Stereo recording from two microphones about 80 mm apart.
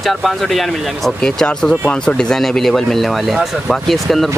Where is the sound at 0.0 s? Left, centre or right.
Centre.